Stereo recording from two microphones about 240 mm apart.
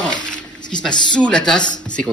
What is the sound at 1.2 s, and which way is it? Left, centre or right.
Speech, centre.